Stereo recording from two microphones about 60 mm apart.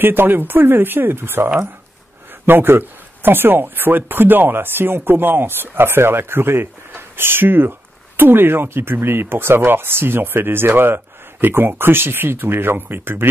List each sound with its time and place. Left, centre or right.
0.0 s speech: right